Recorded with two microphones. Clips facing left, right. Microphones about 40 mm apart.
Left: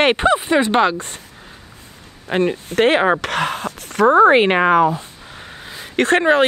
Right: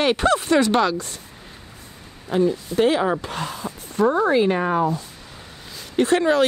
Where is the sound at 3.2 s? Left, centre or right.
Left.